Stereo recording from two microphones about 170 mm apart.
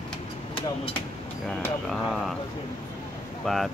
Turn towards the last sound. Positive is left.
turn(degrees=0)  # may be behind; listen again after turning